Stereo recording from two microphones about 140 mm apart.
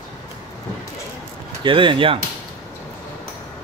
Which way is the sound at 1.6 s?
35° right (ahead or behind).